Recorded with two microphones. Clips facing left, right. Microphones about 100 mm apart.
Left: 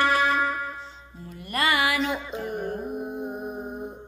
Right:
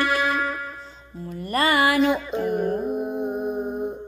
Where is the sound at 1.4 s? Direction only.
35° right (ahead or behind).